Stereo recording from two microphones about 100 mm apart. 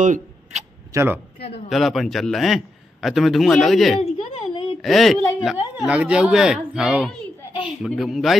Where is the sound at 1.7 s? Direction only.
Centre (ahead or behind).